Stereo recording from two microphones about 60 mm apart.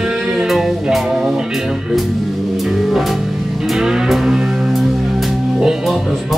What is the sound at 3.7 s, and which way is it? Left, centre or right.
Music, centre.